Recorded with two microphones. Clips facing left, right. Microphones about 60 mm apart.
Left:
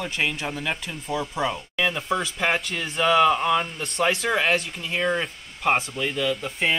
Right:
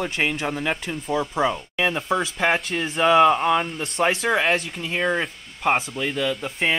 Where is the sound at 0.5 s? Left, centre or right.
Centre.